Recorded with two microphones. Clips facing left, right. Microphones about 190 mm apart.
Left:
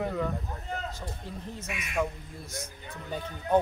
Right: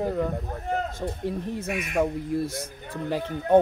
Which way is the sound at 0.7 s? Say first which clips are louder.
Right 9 dB; 60° right (ahead or behind).